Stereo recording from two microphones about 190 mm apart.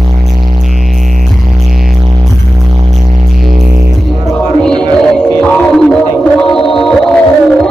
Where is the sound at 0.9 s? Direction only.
40° right (ahead or behind).